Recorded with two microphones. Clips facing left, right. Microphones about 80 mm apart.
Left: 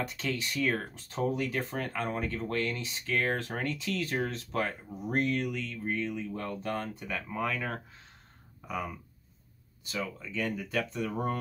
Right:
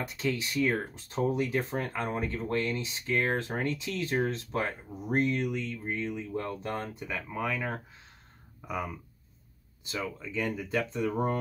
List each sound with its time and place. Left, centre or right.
0.2 s speech: centre
7.2 s speech: centre
10.1 s speech: right